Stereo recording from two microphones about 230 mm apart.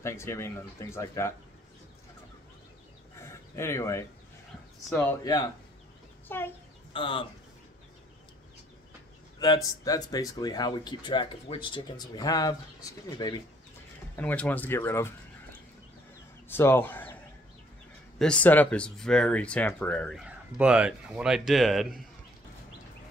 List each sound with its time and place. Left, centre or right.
0.0 s speech: centre
3.2 s a sound: centre
4.8 s speech: centre
5.2 s speech: centre
6.9 s speech: left
9.8 s speech: centre
14.1 s speech: centre
16.4 s speech: centre
18.2 s speech: centre